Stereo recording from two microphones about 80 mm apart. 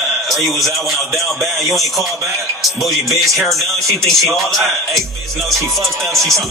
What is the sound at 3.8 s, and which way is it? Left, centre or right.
Speech, right.